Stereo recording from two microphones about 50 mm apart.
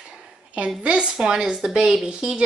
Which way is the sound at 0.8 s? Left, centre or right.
Right.